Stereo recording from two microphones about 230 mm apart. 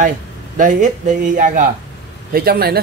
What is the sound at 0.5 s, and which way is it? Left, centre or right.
Speech, right.